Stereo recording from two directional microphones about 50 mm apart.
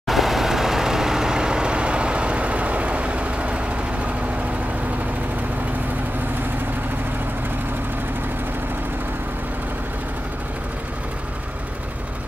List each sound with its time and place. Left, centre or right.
0.1 s vehicle: centre; by 4.1 s right